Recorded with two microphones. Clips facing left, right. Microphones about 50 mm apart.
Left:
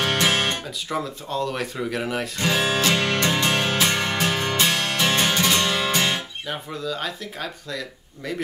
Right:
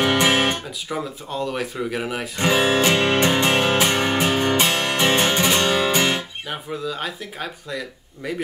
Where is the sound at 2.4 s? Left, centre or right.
Right.